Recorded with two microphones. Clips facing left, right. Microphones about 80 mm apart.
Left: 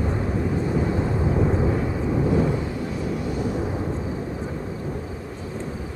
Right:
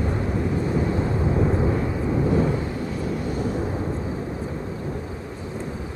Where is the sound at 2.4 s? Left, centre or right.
Right.